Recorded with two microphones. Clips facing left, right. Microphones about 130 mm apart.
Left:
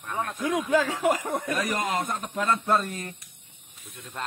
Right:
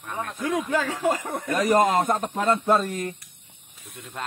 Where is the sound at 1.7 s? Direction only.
40° right (ahead or behind).